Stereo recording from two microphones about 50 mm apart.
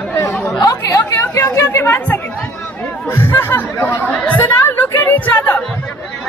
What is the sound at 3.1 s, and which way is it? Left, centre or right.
Speech, left.